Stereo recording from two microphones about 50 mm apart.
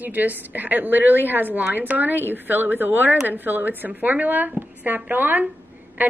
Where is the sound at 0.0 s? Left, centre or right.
Right.